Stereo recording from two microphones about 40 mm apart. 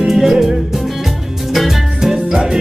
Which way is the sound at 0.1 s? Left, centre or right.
Centre.